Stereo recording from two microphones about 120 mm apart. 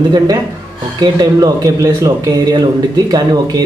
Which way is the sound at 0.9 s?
35° right (ahead or behind).